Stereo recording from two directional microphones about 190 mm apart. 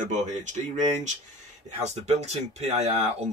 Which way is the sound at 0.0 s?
40° right (ahead or behind).